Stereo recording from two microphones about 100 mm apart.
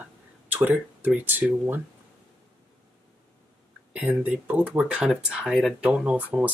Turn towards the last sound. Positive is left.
turn(degrees=-15)  # may be behind; listen again after turning